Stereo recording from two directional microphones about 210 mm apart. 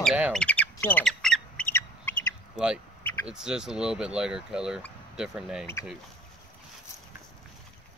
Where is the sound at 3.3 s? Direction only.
5° right (ahead or behind).